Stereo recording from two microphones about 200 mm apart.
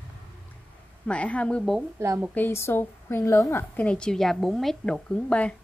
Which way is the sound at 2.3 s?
10° left (ahead or behind).